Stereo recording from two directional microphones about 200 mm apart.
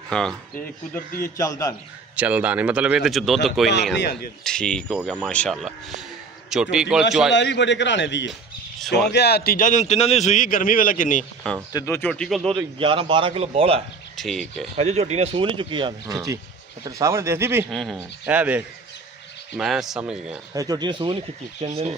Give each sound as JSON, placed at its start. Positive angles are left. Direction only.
{"t": 0.1, "sound": "speech", "side_deg": 5}
{"t": 1.2, "sound": "speech", "side_deg": 15}
{"t": 2.1, "sound": "speech", "side_deg": -5}
{"t": 3.9, "sound": "a man's voice", "side_deg": 55}
{"t": 4.5, "sound": "speech", "side_deg": 5}
{"t": 7.3, "sound": "a man's voice", "side_deg": 60}
{"t": 8.3, "sound": "a sound", "side_deg": 0}
{"t": 9.1, "sound": "a man's voice", "side_deg": 55}
{"t": 11.7, "sound": "speech", "side_deg": 10}
{"t": 12.5, "sound": "speech", "side_deg": -25}
{"t": 14.1, "sound": "speech", "side_deg": 0}
{"t": 14.8, "sound": "speech", "side_deg": -35}
{"t": 17.6, "sound": "speech", "side_deg": 0}
{"t": 20.5, "sound": "speech", "side_deg": -20}